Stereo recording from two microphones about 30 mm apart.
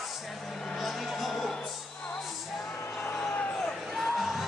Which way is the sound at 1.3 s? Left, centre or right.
Centre.